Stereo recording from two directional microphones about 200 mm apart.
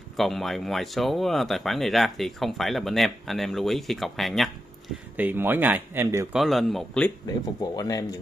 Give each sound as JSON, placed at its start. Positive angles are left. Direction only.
{"t": 0.2, "sound": "speech", "side_deg": 0}
{"t": 7.2, "sound": "speech", "side_deg": 15}